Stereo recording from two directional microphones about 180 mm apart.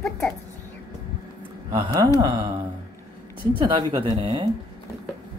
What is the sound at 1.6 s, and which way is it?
Speech, 25° right (ahead or behind).